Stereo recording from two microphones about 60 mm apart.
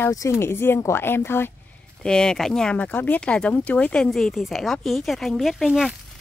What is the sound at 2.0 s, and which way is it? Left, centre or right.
Speech, centre.